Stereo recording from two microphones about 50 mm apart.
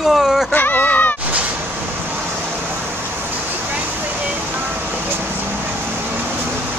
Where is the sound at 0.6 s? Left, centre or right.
Left.